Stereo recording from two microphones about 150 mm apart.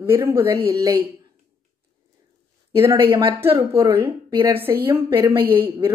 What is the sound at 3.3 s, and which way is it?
A woman's voice, 15° right (ahead or behind).